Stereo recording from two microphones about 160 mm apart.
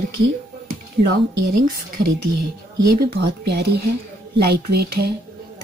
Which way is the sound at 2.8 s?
75° right (ahead or behind).